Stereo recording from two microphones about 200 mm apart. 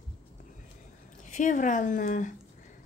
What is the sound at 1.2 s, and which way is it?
A woman's voice, 40° left (ahead or behind).